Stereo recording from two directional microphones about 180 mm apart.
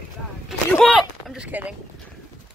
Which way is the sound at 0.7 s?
5° left (ahead or behind).